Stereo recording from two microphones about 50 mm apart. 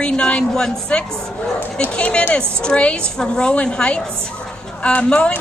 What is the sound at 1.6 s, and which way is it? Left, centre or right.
Speech, left.